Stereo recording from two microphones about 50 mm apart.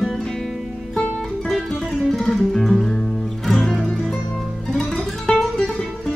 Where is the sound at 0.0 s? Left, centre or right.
Centre.